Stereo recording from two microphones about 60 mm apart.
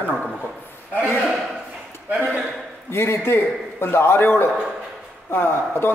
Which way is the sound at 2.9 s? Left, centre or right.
Left.